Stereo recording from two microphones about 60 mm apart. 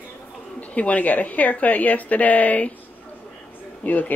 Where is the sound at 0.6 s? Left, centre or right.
Left.